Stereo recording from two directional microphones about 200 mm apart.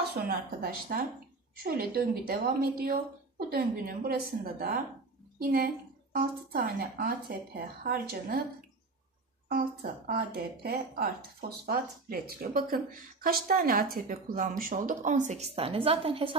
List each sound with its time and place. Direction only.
0.1 s speech: 50° right (ahead or behind)
9.5 s speech: 50° right (ahead or behind); by 16.3 s 30° right (ahead or behind)